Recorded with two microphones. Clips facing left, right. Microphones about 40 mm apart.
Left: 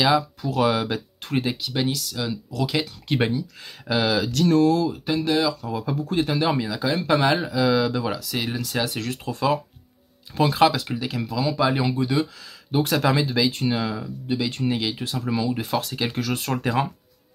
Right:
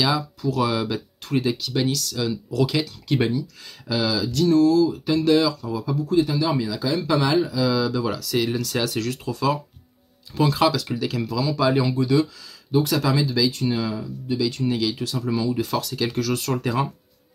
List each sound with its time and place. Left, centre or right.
0.0 s speech: left; by 2.3 s centre
2.7 s speech: left
4.3 s speech: left
5.0 s speech: centre
5.6 s speech: left
6.6 s speech: left
7.1 s speech: left
8.1 s speech: centre
9.3 s speech: left
11.0 s speech: centre
12.7 s speech: left